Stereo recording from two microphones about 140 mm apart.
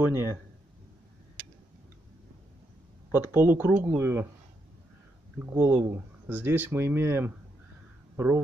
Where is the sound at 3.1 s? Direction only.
15° right (ahead or behind).